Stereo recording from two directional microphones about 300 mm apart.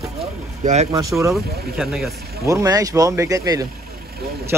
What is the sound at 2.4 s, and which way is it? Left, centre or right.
Speech, centre.